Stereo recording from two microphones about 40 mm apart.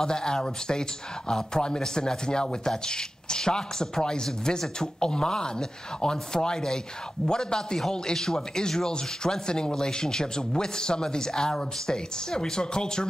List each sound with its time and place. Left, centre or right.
0.0 s speech: centre